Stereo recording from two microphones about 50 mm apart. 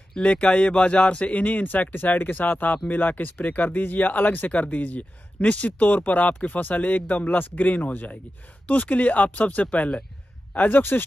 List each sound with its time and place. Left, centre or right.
0.1 s speech: left